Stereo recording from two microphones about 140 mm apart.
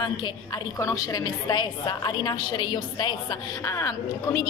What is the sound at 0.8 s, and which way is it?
A woman's voice, 25° left (ahead or behind).